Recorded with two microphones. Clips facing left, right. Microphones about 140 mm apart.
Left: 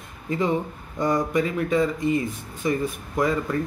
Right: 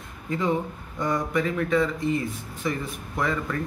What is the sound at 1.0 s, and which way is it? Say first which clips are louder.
Speech: left 3 dB; 20° left (ahead or behind).